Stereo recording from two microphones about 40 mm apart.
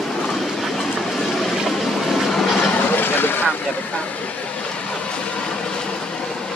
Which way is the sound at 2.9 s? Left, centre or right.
Left.